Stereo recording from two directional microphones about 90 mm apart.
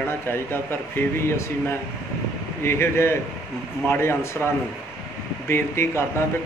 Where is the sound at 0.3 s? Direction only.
25° left (ahead or behind).